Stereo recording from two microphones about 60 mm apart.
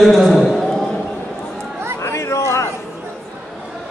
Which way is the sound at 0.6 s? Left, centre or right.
Centre.